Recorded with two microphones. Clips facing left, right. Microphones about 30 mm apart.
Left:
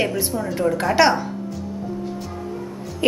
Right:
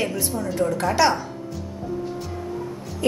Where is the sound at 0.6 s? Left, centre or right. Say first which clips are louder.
Left 3 dB; left.